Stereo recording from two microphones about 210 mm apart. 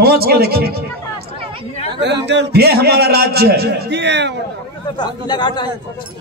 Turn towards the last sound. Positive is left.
turn(degrees=20)  # may be behind; listen again after turning